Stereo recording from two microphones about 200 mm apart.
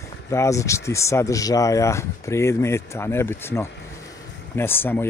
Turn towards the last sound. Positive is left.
turn(degrees=10)  # may be behind; listen again after turning